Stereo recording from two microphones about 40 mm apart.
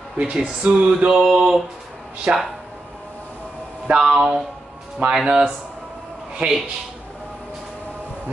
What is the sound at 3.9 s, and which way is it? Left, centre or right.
Speech, centre.